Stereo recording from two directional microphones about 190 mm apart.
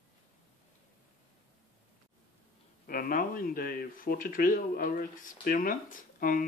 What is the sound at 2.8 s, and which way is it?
Speech, 50° left (ahead or behind).